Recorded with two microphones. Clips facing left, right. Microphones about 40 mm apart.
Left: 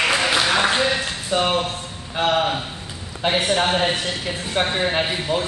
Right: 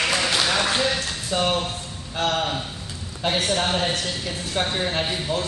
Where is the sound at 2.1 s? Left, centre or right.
Left.